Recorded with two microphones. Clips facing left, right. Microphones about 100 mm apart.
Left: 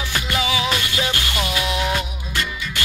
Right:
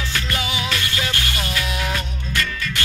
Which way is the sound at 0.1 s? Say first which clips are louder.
Left 6 dB; 20° left (ahead or behind).